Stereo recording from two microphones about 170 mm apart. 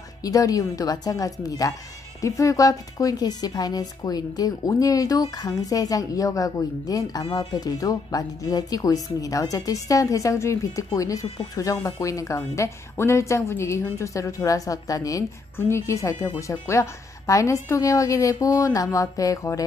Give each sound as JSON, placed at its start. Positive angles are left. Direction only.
{"t": 0.2, "sound": "speech", "side_deg": 20}